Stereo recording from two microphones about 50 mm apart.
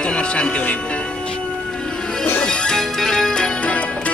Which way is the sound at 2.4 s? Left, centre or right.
Centre.